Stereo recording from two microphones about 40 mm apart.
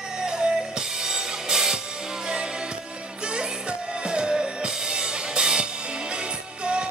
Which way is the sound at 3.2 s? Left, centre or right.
Right.